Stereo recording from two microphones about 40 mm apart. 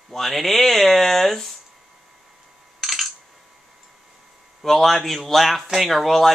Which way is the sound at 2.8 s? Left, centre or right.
Centre.